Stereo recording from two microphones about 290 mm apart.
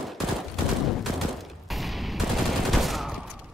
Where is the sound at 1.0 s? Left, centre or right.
Centre.